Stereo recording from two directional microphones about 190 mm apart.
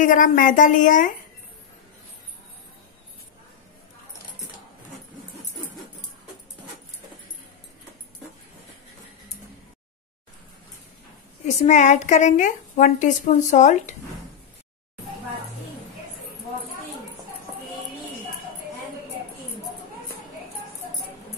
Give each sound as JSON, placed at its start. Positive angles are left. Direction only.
{"t": 0.0, "sound": "a woman's voice", "side_deg": 45}
{"t": 11.4, "sound": "a woman's voice", "side_deg": 40}